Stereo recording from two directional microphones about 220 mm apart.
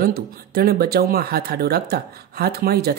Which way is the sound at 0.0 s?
45° right (ahead or behind).